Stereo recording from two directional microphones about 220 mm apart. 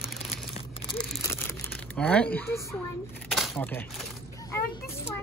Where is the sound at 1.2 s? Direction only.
10° left (ahead or behind).